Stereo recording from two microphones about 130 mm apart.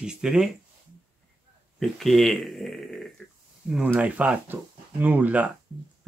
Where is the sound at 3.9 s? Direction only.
10° right (ahead or behind).